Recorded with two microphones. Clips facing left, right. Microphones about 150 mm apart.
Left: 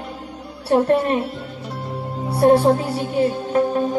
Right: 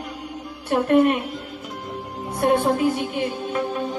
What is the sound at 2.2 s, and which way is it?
Speech, 35° left (ahead or behind).